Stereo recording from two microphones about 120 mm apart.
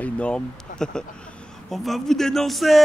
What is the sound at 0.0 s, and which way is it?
Speech, 10° left (ahead or behind).